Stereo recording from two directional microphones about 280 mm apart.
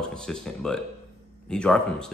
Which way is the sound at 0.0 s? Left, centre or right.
Centre.